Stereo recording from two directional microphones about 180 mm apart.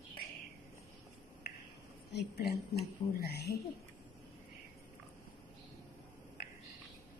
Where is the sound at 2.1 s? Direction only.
65° left (ahead or behind).